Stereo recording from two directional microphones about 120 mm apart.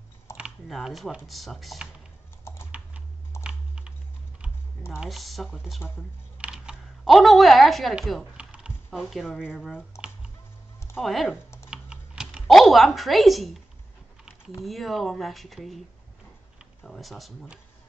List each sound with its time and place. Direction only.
0.4 s speech: centre (ahead or behind)
2.4 s typing: 20° left (ahead or behind)
3.4 s typing: 10° right (ahead or behind)
5.0 s speech: centre (ahead or behind)
5.8 s speech: 20° left (ahead or behind)
6.3 s typing: 5° right (ahead or behind)
9.0 s speech: centre (ahead or behind)
11.0 s speech: centre (ahead or behind)
11.7 s computer keyboard: 5° right (ahead or behind)
14.6 s speech: centre (ahead or behind)
16.8 s speech: centre (ahead or behind)